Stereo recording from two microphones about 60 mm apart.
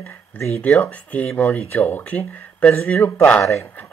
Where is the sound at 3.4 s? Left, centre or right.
Left.